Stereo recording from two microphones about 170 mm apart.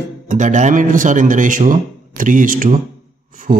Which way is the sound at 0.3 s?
45° right (ahead or behind).